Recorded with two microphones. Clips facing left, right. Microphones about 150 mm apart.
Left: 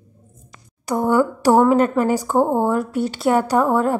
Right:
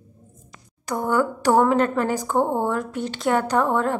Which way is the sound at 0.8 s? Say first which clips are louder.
Left 4 dB; 10° left (ahead or behind).